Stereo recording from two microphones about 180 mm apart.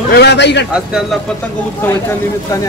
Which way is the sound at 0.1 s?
70° left (ahead or behind).